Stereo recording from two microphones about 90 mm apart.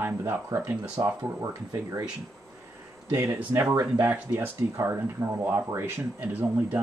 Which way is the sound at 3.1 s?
30° right (ahead or behind).